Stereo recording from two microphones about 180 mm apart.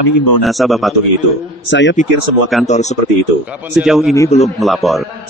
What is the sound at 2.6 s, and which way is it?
Speech, 40° left (ahead or behind).